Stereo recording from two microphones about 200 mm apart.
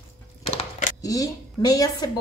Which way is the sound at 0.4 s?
30° left (ahead or behind).